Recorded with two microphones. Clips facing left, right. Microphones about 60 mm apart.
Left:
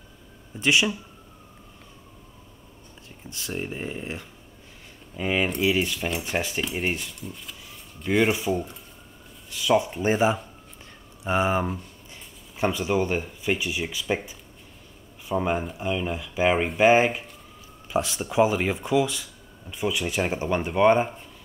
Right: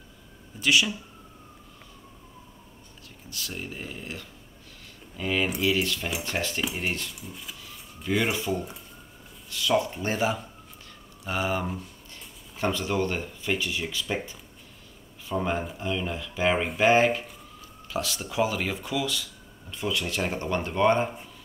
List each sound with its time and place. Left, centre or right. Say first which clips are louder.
0.6 s speech: left 2 dB; left
3.3 s speech: left 5 dB; left
7.2 s speech: left 2 dB; centre